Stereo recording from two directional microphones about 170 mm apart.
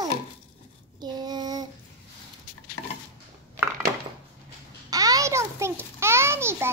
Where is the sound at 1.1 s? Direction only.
25° right (ahead or behind).